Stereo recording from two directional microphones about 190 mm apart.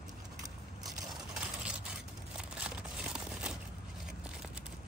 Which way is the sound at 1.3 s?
5° right (ahead or behind).